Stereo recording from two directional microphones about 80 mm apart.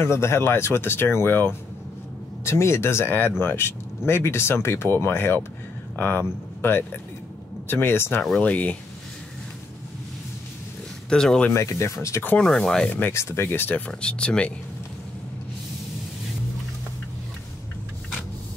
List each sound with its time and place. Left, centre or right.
0.0 s speech: left
8.2 s speech: centre
11.1 s speech: centre
11.5 s speech: left
12.4 s speech: centre
13.1 s speech: left; by 14.5 s centre